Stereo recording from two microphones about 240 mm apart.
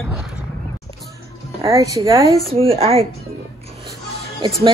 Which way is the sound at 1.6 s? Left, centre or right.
Centre.